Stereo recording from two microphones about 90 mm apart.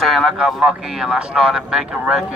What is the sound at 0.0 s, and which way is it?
Speech, centre (ahead or behind).